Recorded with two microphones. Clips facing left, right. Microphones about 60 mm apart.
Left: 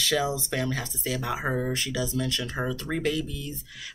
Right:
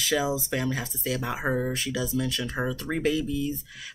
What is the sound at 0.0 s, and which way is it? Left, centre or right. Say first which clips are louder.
Speech: even; centre.